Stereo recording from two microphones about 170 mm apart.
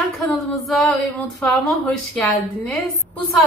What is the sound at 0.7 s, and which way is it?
Speech, centre (ahead or behind).